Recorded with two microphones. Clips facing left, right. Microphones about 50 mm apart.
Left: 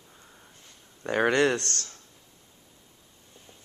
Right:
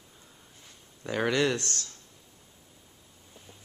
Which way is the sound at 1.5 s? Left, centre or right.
Left.